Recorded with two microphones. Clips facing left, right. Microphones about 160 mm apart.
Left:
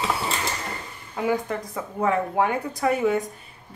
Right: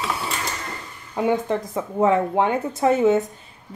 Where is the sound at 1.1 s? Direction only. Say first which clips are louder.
Right 4 dB; 25° right (ahead or behind).